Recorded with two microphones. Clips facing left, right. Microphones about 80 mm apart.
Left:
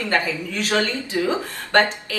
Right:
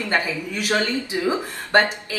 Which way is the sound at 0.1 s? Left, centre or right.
Centre.